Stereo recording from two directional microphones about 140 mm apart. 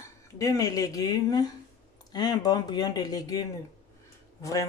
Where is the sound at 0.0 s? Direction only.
25° left (ahead or behind).